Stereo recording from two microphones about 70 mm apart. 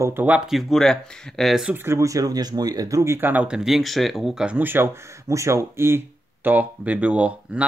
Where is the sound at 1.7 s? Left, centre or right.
Right.